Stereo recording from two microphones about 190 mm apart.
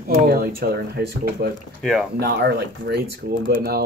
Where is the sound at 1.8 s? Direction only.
Centre (ahead or behind).